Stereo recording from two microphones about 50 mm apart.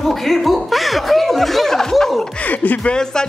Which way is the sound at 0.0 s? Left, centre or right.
Centre.